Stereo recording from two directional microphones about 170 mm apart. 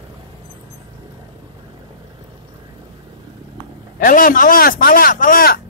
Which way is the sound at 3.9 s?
55° left (ahead or behind).